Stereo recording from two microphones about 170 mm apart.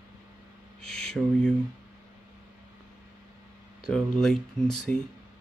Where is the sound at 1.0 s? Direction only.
5° left (ahead or behind).